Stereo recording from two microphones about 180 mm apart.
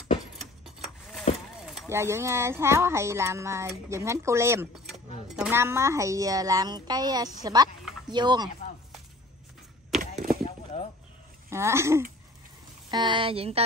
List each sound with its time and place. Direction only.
0.8 s a sound: centre (ahead or behind)
1.9 s speech: 15° right (ahead or behind)
4.8 s speech: centre (ahead or behind); by 8.5 s 25° right (ahead or behind)
10.4 s a sound: 35° left (ahead or behind)
11.5 s speech: 15° right (ahead or behind)
12.9 s speech: 25° right (ahead or behind)